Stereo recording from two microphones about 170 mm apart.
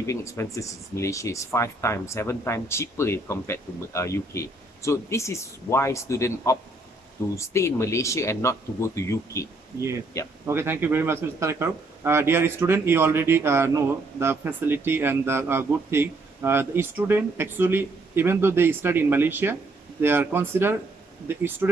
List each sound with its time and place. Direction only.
0.0 s speech: 15° left (ahead or behind)
10.4 s speech: 15° right (ahead or behind)